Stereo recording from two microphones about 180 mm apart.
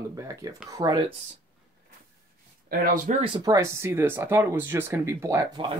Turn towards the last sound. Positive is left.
turn(degrees=-20)  # may be behind; listen again after turning